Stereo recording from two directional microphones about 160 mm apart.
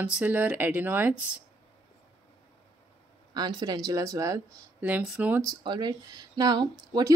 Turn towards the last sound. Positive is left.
turn(degrees=-25)  # may be behind; listen again after turning